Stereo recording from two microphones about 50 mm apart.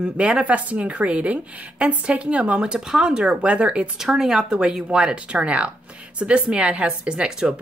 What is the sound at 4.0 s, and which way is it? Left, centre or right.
Speech, centre.